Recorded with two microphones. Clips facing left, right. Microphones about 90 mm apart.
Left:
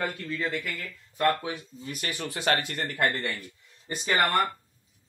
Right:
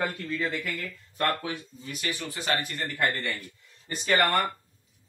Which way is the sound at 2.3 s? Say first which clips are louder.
Left 5 dB; 70° left (ahead or behind).